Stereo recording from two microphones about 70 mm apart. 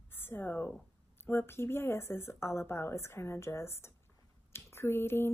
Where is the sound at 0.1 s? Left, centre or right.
Left.